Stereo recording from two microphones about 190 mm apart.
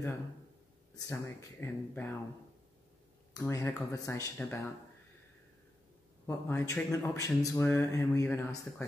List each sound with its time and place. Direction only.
0.9 s speech: 15° left (ahead or behind)
3.3 s speech: 15° left (ahead or behind)
6.2 s speech: 15° left (ahead or behind)